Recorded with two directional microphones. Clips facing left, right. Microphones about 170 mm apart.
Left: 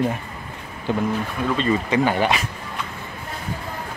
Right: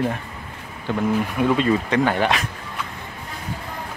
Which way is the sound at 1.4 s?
10° right (ahead or behind).